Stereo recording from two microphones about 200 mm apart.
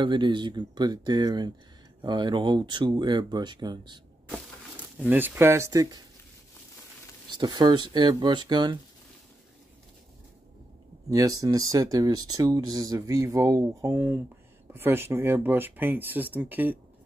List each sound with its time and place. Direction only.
0.0 s speech: 25° right (ahead or behind)
4.3 s speech: 10° right (ahead or behind)
7.2 s speech: 20° right (ahead or behind)
11.1 s speech: 20° right (ahead or behind)